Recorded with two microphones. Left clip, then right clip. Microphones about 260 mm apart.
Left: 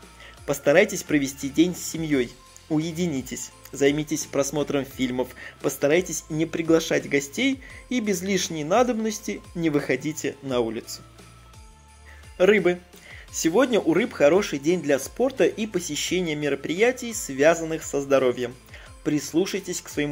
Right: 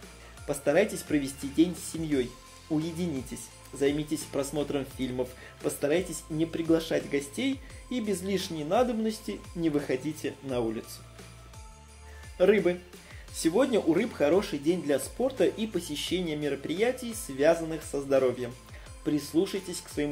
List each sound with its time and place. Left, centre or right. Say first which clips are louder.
0.5 s speech: left 7 dB; left
12.4 s speech: left 5 dB; left